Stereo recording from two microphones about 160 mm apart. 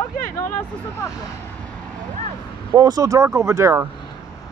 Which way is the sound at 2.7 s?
25° right (ahead or behind).